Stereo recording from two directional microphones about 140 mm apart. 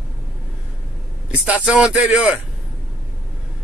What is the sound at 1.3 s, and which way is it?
Speech, 10° right (ahead or behind).